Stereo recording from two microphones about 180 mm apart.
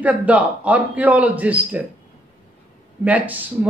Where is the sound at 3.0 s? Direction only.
10° right (ahead or behind).